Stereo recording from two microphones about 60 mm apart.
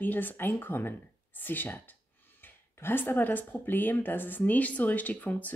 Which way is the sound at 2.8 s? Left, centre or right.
Left.